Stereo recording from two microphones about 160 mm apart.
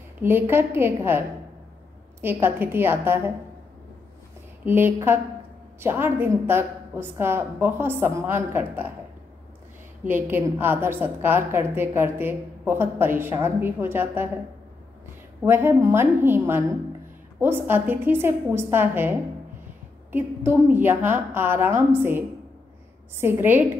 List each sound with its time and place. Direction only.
0.2 s a woman's voice: 15° right (ahead or behind)
2.2 s a woman's voice: 15° right (ahead or behind)
4.6 s a woman's voice: 15° right (ahead or behind)
10.0 s a woman's voice: 15° right (ahead or behind)
15.4 s a woman's voice: 15° right (ahead or behind)
23.2 s a woman's voice: 15° right (ahead or behind)